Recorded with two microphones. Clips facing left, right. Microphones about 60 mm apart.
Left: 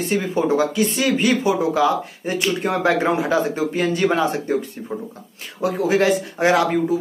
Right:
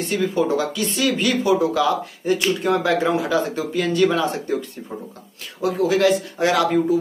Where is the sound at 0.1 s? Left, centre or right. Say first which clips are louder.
Even; left.